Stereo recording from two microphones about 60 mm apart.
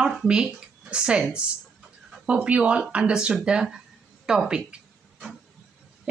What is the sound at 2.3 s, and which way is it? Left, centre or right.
Speech, centre.